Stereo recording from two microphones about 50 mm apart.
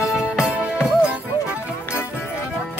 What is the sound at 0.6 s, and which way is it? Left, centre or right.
Music, centre.